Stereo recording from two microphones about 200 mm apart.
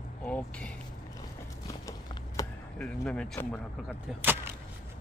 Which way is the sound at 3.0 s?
5° left (ahead or behind).